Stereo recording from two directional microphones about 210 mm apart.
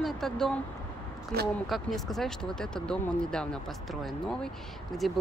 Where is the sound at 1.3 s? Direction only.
45° right (ahead or behind).